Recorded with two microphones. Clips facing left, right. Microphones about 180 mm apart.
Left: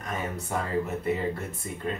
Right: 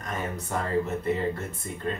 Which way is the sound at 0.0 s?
5° left (ahead or behind).